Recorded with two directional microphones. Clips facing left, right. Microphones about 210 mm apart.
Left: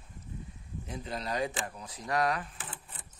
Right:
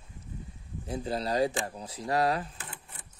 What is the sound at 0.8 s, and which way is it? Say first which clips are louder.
Speech: right 6 dB; 30° right (ahead or behind).